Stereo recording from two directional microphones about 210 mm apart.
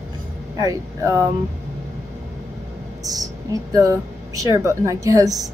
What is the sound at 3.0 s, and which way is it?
Speech, 15° right (ahead or behind).